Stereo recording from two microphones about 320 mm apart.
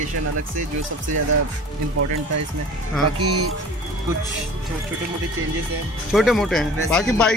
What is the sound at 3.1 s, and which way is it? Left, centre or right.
Speech, right.